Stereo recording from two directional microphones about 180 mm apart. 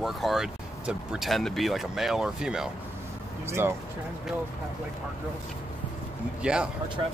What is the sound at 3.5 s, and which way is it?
Speech, 15° right (ahead or behind).